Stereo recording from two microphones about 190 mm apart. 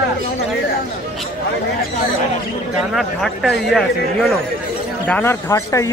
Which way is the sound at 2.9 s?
Centre (ahead or behind).